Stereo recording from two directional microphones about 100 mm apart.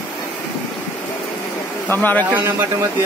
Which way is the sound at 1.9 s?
20° left (ahead or behind).